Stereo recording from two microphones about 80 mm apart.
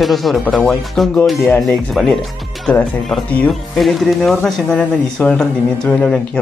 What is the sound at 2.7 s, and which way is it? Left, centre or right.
Speech, centre.